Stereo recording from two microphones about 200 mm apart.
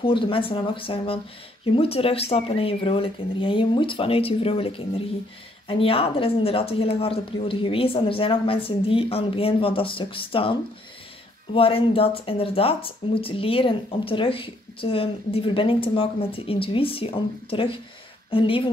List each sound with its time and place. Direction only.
0.0 s speech: 25° left (ahead or behind)